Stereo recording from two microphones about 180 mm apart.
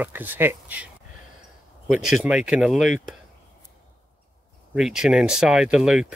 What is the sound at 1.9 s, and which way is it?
Speech, 5° right (ahead or behind).